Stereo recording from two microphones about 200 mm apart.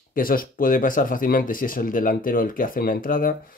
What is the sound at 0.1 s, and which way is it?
Speech, 45° left (ahead or behind).